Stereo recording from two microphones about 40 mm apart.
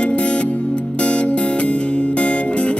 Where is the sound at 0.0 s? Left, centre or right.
Left.